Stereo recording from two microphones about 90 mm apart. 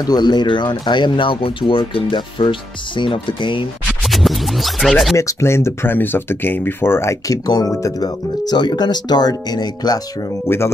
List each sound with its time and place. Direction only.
0.0 s speech: 50° left (ahead or behind); by 3.6 s 70° left (ahead or behind)
4.1 s music: centre (ahead or behind)
5.1 s speech: 30° left (ahead or behind)
7.4 s speech: 45° left (ahead or behind)